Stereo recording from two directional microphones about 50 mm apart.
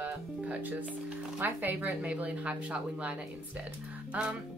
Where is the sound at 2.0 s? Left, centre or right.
Right.